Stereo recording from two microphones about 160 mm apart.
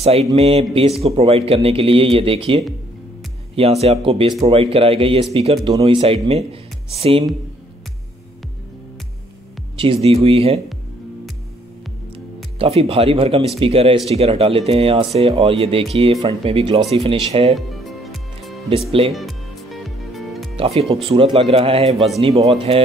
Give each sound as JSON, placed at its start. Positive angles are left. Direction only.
{"t": 0.0, "sound": "speech", "side_deg": -40}
{"t": 9.8, "sound": "speech", "side_deg": -35}
{"t": 12.5, "sound": "speech", "side_deg": -40}
{"t": 17.6, "sound": "music", "side_deg": 0}
{"t": 18.9, "sound": "speech", "side_deg": -35}
{"t": 19.1, "sound": "music", "side_deg": 0}
{"t": 20.5, "sound": "speech", "side_deg": -40}